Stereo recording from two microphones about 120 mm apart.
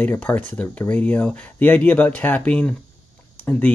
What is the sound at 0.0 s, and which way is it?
Speech, 15° left (ahead or behind).